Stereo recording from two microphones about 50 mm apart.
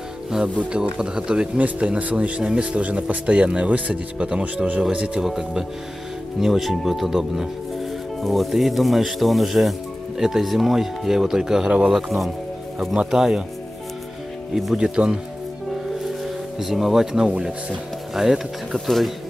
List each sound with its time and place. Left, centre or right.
0.6 s speech: right
5.2 s speech: centre
14.5 s speech: centre
16.5 s speech: centre